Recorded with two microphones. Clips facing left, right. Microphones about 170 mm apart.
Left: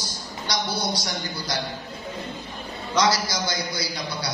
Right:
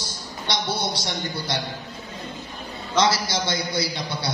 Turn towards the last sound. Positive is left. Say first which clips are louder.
# right 3 dB
turn(degrees=-25)  # may be behind; listen again after turning